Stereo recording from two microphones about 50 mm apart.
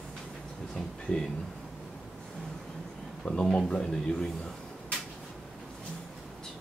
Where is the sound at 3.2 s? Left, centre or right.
Centre.